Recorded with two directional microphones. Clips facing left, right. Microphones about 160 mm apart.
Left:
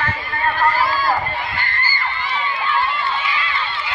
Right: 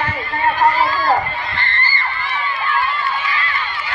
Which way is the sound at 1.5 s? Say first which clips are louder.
Right 1 dB; 5° left (ahead or behind).